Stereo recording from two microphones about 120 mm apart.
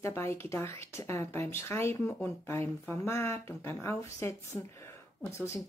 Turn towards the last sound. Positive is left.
turn(degrees=25)  # may be behind; listen again after turning